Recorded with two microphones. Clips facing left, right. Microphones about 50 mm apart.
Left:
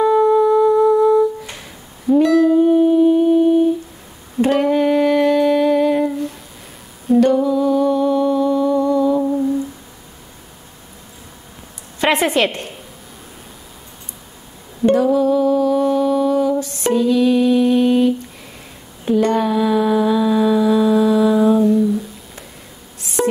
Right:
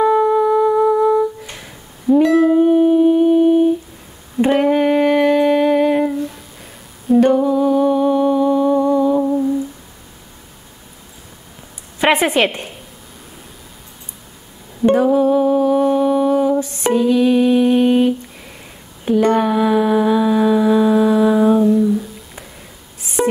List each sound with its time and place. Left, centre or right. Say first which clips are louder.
0.0 s music: left 1 dB; centre
1.5 s music: even; centre
2.3 s music: even; right
4.4 s humming: right 1 dB; centre
6.0 s a sound: right 1 dB; centre
7.2 s humming: right 1 dB; right
9.2 s humming: right 1 dB; centre
12.0 s a woman's voice: right 1 dB; centre
14.9 s music: right 1 dB; right
19.0 s a sound: right 2 dB; centre